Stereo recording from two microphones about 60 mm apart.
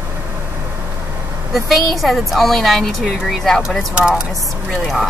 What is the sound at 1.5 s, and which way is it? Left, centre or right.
Speech, centre.